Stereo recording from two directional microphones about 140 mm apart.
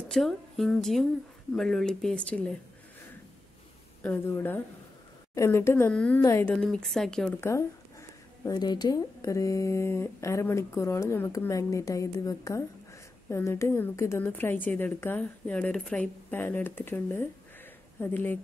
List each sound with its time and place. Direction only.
0.1 s speech: centre (ahead or behind)
4.0 s a woman's voice: 15° left (ahead or behind)
6.5 s speech: 5° left (ahead or behind)
7.3 s a woman's voice: 20° left (ahead or behind)